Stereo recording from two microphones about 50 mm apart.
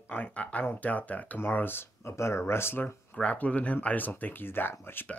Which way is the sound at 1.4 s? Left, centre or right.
Left.